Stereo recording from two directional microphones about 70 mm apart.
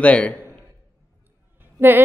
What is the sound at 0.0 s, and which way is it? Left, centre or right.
Speech, centre.